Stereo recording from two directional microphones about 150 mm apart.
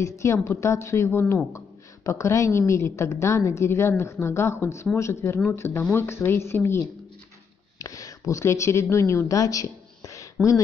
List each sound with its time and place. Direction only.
0.2 s a woman's voice: 20° left (ahead or behind)
7.8 s a woman's voice: 25° left (ahead or behind)